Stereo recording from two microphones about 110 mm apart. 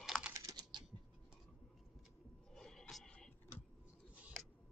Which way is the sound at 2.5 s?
5° left (ahead or behind).